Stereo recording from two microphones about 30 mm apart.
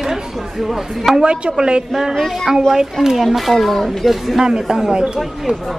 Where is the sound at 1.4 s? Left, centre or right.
Right.